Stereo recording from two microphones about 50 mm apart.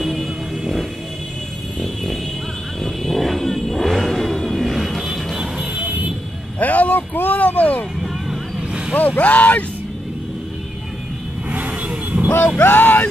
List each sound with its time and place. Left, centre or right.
0.0 s vehicle: centre
2.8 s vehicle: centre
6.6 s a sound: left
8.0 s vehicle: centre
8.9 s speech: left
11.5 s vehicle: right
12.6 s a sound: left